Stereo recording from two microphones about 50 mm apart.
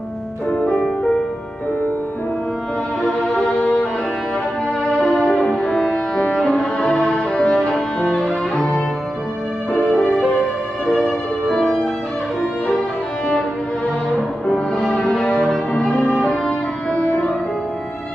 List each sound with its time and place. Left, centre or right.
0.5 s music: left
3.0 s music: centre
4.8 s music: centre
5.2 s music: centre
8.2 s music: centre
9.7 s music: left
14.8 s music: centre